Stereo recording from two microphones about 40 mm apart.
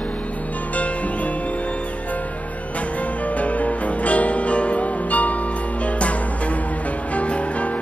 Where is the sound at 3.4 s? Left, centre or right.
Left.